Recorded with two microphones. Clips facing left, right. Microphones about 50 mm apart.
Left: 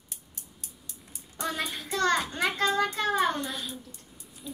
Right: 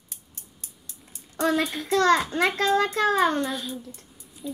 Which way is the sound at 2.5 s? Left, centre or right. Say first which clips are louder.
Right 3 dB; centre.